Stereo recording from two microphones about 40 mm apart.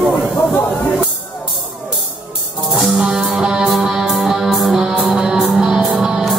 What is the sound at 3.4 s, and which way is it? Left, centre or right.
Music, centre.